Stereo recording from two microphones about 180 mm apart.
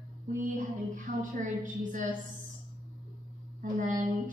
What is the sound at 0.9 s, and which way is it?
Speech, 45° right (ahead or behind).